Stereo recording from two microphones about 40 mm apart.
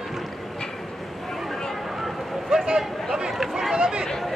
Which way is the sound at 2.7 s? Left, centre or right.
Centre.